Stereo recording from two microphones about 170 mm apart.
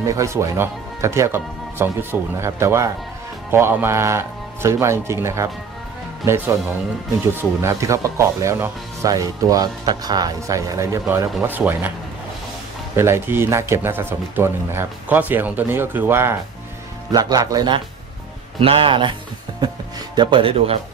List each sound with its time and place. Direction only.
0.0 s speech: 20° right (ahead or behind)
7.6 s speech: 15° right (ahead or behind)
12.9 s a man's voice: 15° right (ahead or behind)
20.2 s speech: 25° right (ahead or behind)